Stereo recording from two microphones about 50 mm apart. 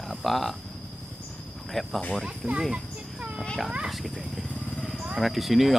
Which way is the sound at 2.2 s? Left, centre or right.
Centre.